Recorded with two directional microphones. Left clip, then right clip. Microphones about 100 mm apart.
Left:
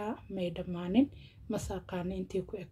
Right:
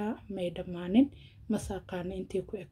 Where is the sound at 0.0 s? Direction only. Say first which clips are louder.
Right 2 dB; 20° right (ahead or behind).